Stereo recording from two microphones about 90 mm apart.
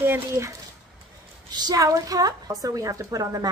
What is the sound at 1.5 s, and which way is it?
A woman's voice, 45° right (ahead or behind).